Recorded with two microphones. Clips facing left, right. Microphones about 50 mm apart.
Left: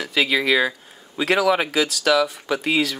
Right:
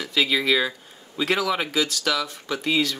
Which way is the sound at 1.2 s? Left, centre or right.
Centre.